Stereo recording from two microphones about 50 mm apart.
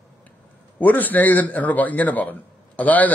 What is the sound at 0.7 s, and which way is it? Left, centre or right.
A man's voice, left.